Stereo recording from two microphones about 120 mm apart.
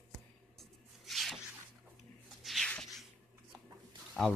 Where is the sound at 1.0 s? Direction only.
Centre (ahead or behind).